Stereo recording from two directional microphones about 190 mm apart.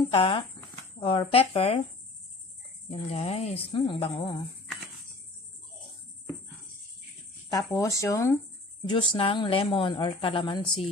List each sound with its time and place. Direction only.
0.0 s a woman's voice: 25° left (ahead or behind)
2.9 s speech: 35° left (ahead or behind)
7.4 s speech: 20° left (ahead or behind)
8.9 s a woman's voice: 25° left (ahead or behind)